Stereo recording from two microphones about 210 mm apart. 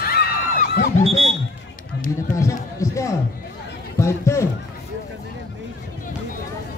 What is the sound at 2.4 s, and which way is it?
Music, 15° left (ahead or behind).